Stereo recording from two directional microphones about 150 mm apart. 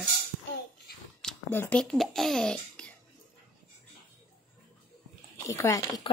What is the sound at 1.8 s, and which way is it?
A child's voice, centre (ahead or behind).